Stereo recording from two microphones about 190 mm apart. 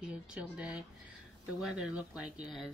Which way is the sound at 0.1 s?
5° right (ahead or behind).